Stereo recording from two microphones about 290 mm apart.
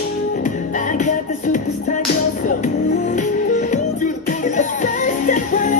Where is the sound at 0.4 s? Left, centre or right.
Left.